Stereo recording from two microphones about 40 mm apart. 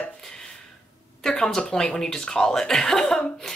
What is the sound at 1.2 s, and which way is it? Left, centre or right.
Speech, centre.